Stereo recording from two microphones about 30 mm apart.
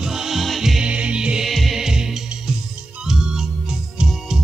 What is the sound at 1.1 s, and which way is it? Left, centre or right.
Music, right.